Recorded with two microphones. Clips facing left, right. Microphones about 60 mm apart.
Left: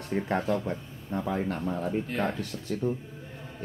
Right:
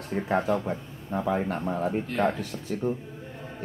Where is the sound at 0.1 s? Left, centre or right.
Centre.